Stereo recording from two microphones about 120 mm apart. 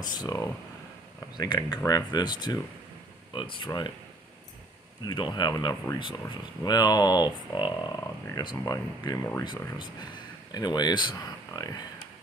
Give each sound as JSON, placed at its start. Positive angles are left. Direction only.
{"t": 0.0, "sound": "speech", "side_deg": 35}
{"t": 5.0, "sound": "speech", "side_deg": 40}